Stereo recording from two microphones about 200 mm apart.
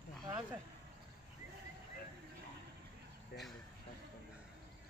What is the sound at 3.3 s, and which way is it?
Speech, 50° left (ahead or behind).